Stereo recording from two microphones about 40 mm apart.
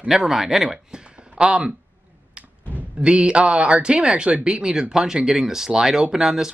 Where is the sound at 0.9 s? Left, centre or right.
Right.